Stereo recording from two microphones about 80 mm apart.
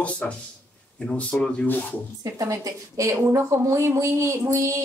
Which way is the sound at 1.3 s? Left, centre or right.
Centre.